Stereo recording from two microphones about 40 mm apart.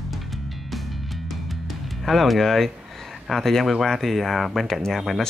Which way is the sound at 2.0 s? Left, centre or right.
Centre.